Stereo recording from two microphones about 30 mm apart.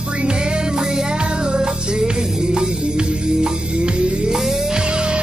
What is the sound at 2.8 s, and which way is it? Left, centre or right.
Music, right.